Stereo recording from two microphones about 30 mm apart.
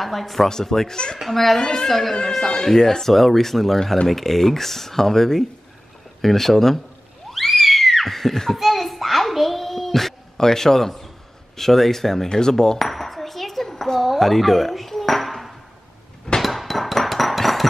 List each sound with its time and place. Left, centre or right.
0.0 s speech: centre
0.5 s speech: centre
1.3 s speech: centre
1.6 s speech: centre
1.9 s speech: centre
7.2 s a sound: centre
8.5 s child singing: centre
10.3 s speech: centre
12.7 s dishes: centre
16.3 s hammer: centre